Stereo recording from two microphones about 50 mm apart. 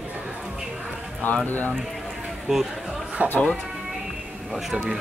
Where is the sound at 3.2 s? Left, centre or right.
Right.